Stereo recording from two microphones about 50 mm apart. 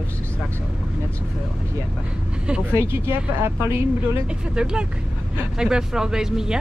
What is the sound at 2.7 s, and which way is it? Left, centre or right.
Speech, right.